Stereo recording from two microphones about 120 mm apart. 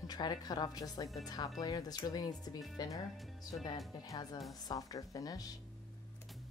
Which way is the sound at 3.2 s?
Centre (ahead or behind).